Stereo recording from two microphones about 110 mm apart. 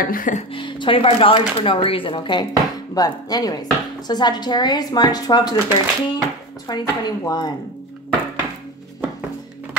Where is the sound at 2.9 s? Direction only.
35° left (ahead or behind).